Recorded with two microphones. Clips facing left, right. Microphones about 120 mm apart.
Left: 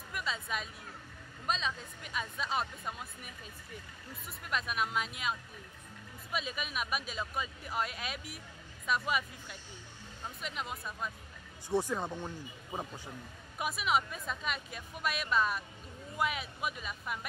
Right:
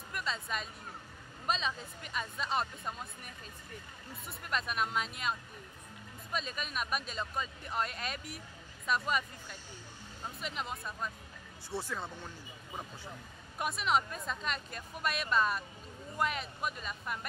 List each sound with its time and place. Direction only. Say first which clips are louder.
0.1 s speech: even; 5° left (ahead or behind)
11.7 s speech: left 7 dB; 15° left (ahead or behind)
13.6 s speech: even; 5° left (ahead or behind)